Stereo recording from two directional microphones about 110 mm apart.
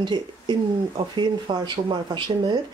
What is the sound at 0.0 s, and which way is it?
Speech, 45° right (ahead or behind).